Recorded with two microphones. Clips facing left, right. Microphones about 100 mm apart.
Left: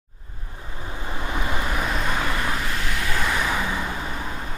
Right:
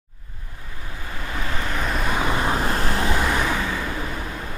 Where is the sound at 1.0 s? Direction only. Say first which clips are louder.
Left 2 dB; 20° left (ahead or behind).